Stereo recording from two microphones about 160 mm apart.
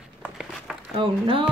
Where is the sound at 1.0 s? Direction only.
35° right (ahead or behind).